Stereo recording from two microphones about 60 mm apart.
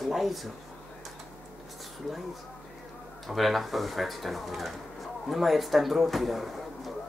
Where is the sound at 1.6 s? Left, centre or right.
Centre.